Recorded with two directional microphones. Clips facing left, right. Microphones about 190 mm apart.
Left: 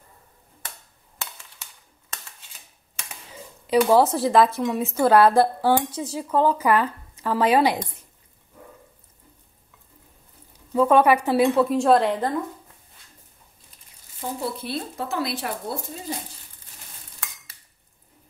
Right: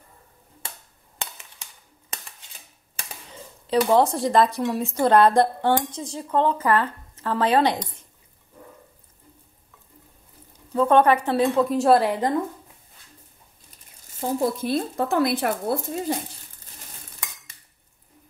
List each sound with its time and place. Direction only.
1.1 s a sound: 20° right (ahead or behind)
3.6 s a woman's voice: 5° left (ahead or behind)
10.5 s a woman's voice: 10° left (ahead or behind)
11.7 s a woman's voice: 5° right (ahead or behind)
14.4 s speech: 45° right (ahead or behind)